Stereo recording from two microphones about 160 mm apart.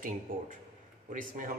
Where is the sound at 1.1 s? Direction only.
55° right (ahead or behind).